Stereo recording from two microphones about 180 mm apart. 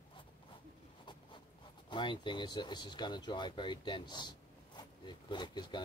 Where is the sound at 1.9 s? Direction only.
25° left (ahead or behind).